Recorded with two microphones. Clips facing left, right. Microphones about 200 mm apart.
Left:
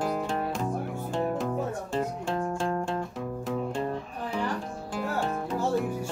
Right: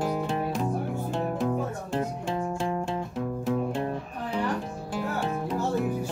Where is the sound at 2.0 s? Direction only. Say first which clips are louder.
Even; 15° right (ahead or behind).